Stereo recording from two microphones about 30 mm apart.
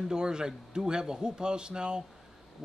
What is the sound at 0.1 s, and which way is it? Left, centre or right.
A man's voice, right.